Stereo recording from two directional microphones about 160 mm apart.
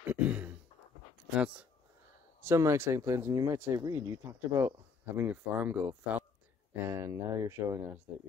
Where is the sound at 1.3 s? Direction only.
5° right (ahead or behind).